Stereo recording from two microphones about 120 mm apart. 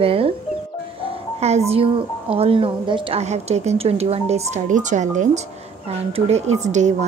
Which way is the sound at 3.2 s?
70° right (ahead or behind).